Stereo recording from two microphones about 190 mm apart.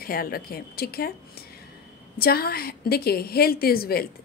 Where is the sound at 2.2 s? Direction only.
55° left (ahead or behind).